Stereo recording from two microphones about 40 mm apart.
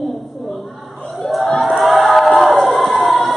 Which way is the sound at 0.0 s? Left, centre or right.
Centre.